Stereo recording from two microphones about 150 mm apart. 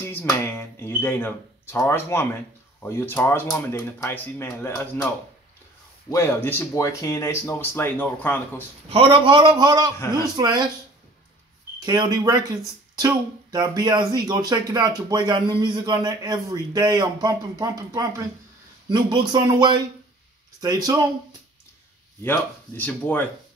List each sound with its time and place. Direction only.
0.0 s speech: 15° left (ahead or behind)
8.9 s a man's voice: 35° right (ahead or behind)
11.8 s a man's voice: 30° right (ahead or behind)
22.2 s speech: 15° left (ahead or behind)